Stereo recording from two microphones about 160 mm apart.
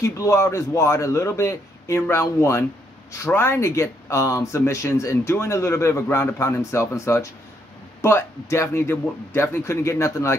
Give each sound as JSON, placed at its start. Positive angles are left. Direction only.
{"t": 0.0, "sound": "speech", "side_deg": 20}